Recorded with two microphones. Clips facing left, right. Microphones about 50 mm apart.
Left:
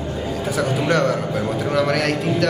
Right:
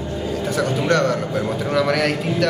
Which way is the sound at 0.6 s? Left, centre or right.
Centre.